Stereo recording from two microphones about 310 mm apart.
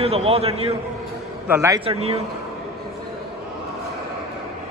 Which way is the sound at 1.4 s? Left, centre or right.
Centre.